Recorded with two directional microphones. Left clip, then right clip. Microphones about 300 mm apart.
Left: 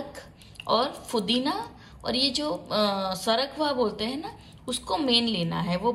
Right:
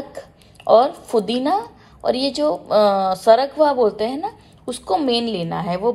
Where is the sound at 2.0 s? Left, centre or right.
Centre.